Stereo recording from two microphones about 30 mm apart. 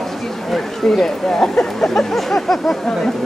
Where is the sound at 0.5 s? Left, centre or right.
Centre.